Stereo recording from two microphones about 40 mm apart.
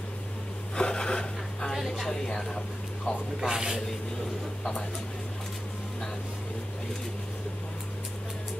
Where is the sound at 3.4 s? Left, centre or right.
Centre.